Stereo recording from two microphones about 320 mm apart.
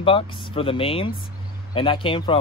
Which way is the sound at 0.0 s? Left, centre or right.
Centre.